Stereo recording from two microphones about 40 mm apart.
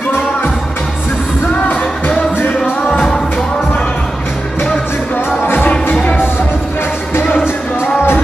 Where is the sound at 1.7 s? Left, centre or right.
Left.